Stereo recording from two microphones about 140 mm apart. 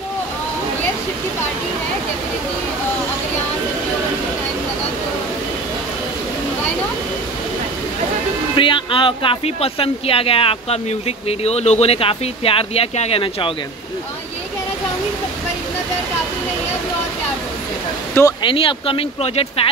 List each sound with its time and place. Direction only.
8.5 s speech: 35° left (ahead or behind)
18.4 s speech: 40° left (ahead or behind)